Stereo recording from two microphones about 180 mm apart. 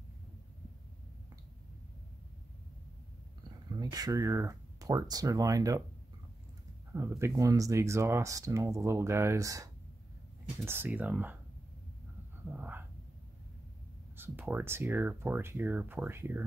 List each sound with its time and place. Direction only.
3.8 s speech: 20° right (ahead or behind)
6.9 s speech: 15° right (ahead or behind)
12.5 s dog: 10° right (ahead or behind)
14.1 s speech: 10° right (ahead or behind)